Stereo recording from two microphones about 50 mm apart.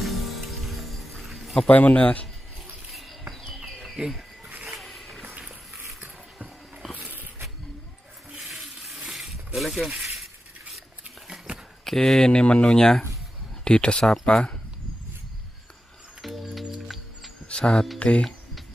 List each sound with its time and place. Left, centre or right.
0.0 s music: centre
1.7 s speech: left
2.9 s a sound: centre
4.8 s a sound: centre
8.4 s a sound: centre
9.6 s speech: centre
11.8 s speech: centre
16.2 s music: centre
17.5 s speech: centre